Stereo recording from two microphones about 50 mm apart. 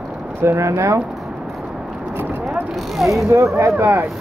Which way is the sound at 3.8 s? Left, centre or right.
Right.